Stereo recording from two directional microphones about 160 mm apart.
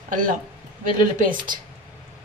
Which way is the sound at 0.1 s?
55° right (ahead or behind).